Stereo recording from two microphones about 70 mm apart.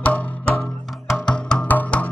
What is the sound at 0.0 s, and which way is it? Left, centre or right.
Music, left.